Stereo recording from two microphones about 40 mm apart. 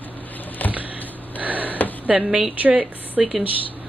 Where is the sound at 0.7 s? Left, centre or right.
Right.